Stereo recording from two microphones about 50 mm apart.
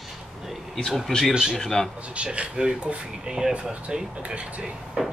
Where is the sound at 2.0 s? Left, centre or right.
Right.